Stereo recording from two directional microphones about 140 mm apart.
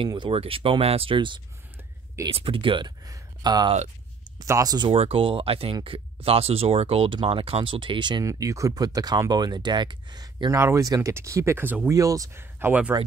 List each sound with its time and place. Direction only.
0.0 s speech: 35° right (ahead or behind)
4.9 s speech: 45° right (ahead or behind); by 11.9 s 15° right (ahead or behind)
11.9 s speech: 25° right (ahead or behind)